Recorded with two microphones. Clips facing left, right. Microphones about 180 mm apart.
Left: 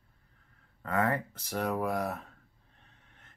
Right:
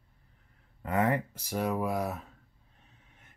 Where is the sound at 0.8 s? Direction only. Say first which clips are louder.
Right 2 dB; 20° right (ahead or behind).